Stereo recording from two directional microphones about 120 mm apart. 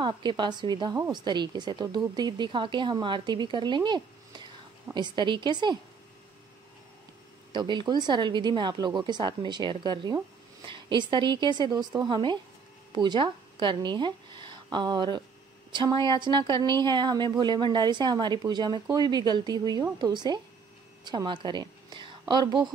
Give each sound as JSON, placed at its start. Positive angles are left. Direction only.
{"t": 0.0, "sound": "speech", "side_deg": -40}
{"t": 7.5, "sound": "a woman's voice", "side_deg": -40}